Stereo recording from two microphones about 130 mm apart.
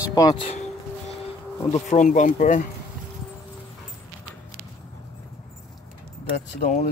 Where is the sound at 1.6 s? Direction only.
65° left (ahead or behind); by 2.7 s 85° left.